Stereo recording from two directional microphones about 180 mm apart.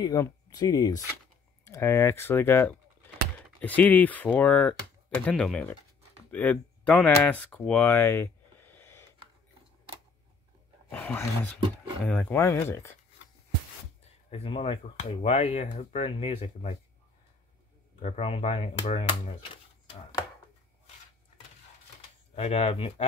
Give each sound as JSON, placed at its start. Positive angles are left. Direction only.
{"t": 0.0, "sound": "speech", "side_deg": 20}
{"t": 10.9, "sound": "speech", "side_deg": 10}
{"t": 14.3, "sound": "speech", "side_deg": 30}
{"t": 18.0, "sound": "speech", "side_deg": 35}
{"t": 22.3, "sound": "speech", "side_deg": 35}